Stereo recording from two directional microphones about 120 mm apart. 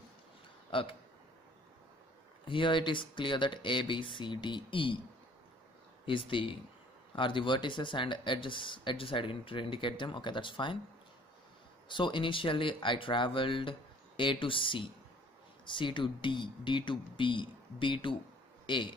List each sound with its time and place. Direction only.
0.7 s a man's voice: 45° left (ahead or behind)
2.4 s speech: 45° left (ahead or behind)
6.0 s speech: 45° left (ahead or behind)
11.9 s a man's voice: 40° left (ahead or behind)